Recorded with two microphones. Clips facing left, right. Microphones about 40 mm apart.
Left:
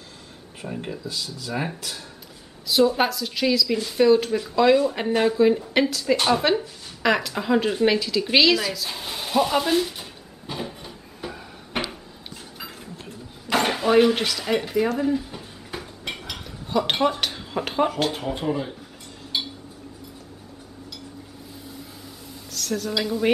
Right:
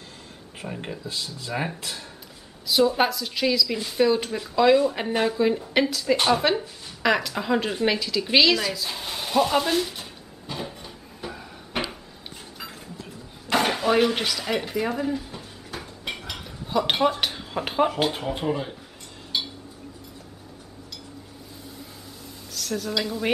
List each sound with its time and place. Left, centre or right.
0.6 s speech: centre
1.0 s speech: right
1.5 s a woman's voice: centre
10.4 s cupboard open or close: centre
13.5 s speech: centre
15.0 s dishes: centre
19.3 s a sound: centre
22.5 s a woman's voice: centre